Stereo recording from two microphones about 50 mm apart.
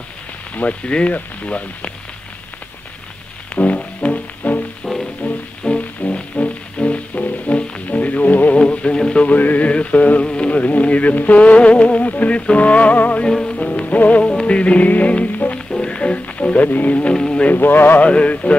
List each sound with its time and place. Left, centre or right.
0.6 s music: left
3.5 s music: left
8.5 s music: centre
9.3 s music: left
13.3 s music: centre
14.2 s music: centre
17.1 s speech: centre
17.5 s speech: left
18.0 s music: left